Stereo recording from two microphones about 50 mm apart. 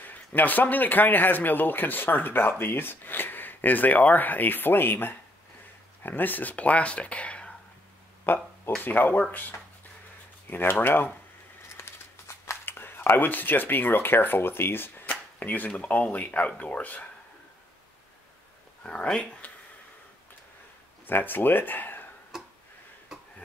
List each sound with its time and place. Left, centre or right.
0.0 s speech: left
8.3 s speech: left
11.7 s a sound: left
12.6 s speech: left
18.8 s speech: left
19.4 s a sound: left
21.1 s speech: left
22.3 s tick-tock: centre